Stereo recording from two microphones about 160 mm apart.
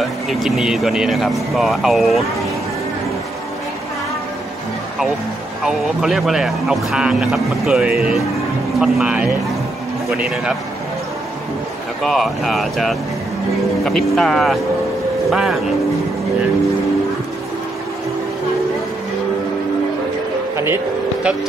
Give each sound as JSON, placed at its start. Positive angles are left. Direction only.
{"t": 0.0, "sound": "speech", "side_deg": 0}
{"t": 5.6, "sound": "speech", "side_deg": 0}
{"t": 12.0, "sound": "speech", "side_deg": 0}
{"t": 20.5, "sound": "vehicle", "side_deg": -15}